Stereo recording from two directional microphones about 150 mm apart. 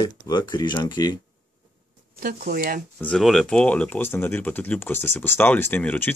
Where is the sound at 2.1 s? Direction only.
75° right (ahead or behind).